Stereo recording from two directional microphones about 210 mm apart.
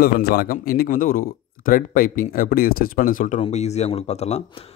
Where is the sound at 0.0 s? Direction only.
45° left (ahead or behind).